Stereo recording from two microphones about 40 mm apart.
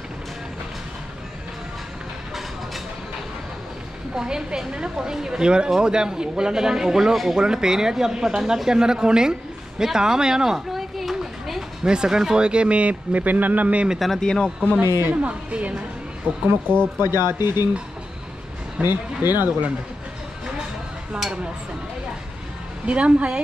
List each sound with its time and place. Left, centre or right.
4.1 s a woman's voice: centre
10.7 s a sound: centre
11.8 s speech: centre
12.4 s speech: right
13.9 s speech: centre
14.2 s speech: centre
14.8 s speech: right
15.2 s speech: right
16.3 s speech: right
16.7 s speech: right
17.0 s speech: right
18.8 s speech: right
19.2 s speech: right
22.8 s a woman's voice: right